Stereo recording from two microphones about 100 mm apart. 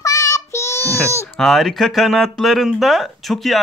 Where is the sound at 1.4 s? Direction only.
5° left (ahead or behind).